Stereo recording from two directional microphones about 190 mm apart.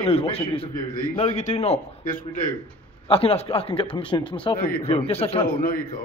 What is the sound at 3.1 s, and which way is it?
Speech, 30° left (ahead or behind).